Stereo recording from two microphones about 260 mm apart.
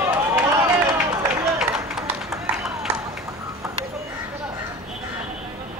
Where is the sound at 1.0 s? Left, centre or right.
Centre.